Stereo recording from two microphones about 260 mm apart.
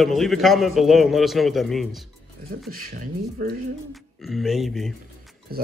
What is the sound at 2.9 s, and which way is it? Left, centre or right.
Speech, right.